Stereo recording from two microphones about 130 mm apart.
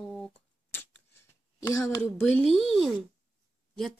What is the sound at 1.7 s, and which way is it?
Speech, 20° left (ahead or behind).